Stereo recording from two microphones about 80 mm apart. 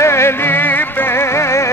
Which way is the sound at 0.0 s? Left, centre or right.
Left.